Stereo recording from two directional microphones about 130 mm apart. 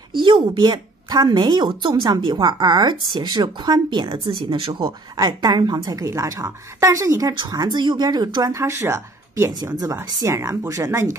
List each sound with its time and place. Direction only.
0.2 s speech: 35° right (ahead or behind)